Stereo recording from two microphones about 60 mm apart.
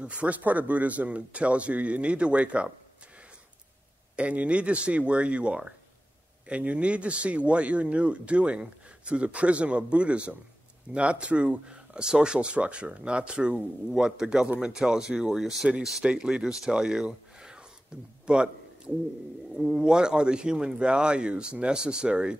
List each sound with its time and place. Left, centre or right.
0.0 s speech: right
4.2 s speech: right
18.2 s a sound: centre
19.5 s speech: centre